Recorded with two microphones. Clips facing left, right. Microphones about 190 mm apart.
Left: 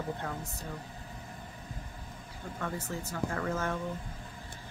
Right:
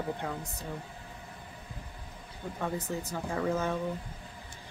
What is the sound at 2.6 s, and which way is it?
A woman's voice, 15° right (ahead or behind).